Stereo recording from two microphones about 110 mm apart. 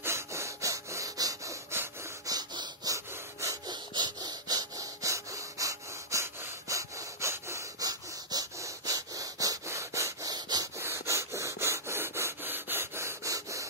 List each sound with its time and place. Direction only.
0.0 s sawing: 25° right (ahead or behind)
2.2 s snort: 40° right (ahead or behind)
3.1 s breathing: 30° right (ahead or behind)
3.7 s wood: 40° right (ahead or behind)
10.8 s rub: 25° right (ahead or behind)